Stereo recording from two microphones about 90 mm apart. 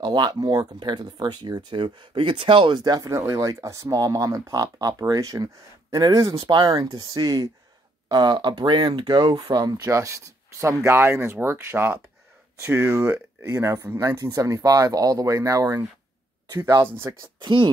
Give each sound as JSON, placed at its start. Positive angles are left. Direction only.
{"t": 0.0, "sound": "speech", "side_deg": -55}
{"t": 3.1, "sound": "speech", "side_deg": -35}
{"t": 16.8, "sound": "speech", "side_deg": -25}
{"t": 17.2, "sound": "speech", "side_deg": -60}